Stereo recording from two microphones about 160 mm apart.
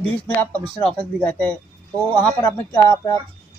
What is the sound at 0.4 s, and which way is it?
Speech, 10° left (ahead or behind).